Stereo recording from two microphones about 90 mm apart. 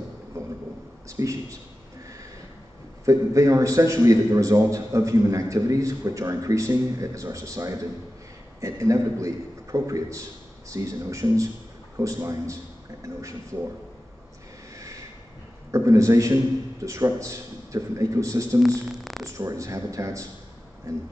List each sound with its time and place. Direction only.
0.3 s a sound: 40° right (ahead or behind)
1.0 s a man's voice: 35° right (ahead or behind)
3.1 s a man's voice: 35° right (ahead or behind)
15.7 s a man's voice: 35° right (ahead or behind)
18.9 s a sound: centre (ahead or behind)
19.2 s a man's voice: 35° right (ahead or behind)